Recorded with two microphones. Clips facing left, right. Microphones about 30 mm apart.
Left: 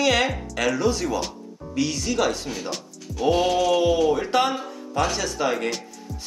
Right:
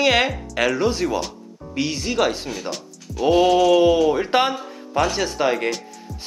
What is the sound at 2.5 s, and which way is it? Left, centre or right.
Speech, centre.